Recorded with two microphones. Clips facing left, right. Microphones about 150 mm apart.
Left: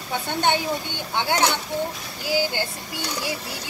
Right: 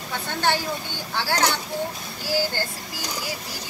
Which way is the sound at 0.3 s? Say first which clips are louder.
Left 2 dB; 20° left (ahead or behind).